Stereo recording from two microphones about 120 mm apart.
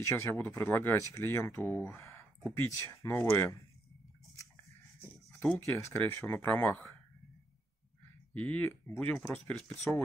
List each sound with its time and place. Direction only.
0.0 s speech: 20° left (ahead or behind)
5.4 s speech: 20° left (ahead or behind)
8.4 s speech: 15° left (ahead or behind)